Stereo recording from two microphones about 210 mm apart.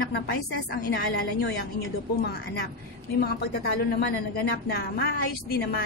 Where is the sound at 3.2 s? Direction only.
45° left (ahead or behind).